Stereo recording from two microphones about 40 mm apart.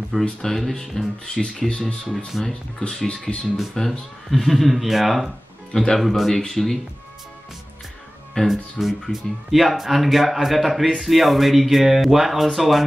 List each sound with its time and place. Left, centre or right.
0.1 s speech: centre
0.5 s speech: centre; by 2.0 s left
2.3 s speech: centre
2.8 s speech: left
3.3 s speech: centre
3.8 s speech: centre
4.3 s speech: centre
5.7 s speech: centre
5.9 s speech: centre
8.5 s speech: centre